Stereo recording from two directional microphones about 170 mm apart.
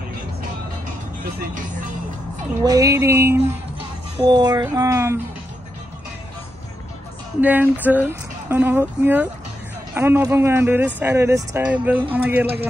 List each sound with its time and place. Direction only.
2.6 s speech: 20° right (ahead or behind)
7.3 s speech: 10° right (ahead or behind)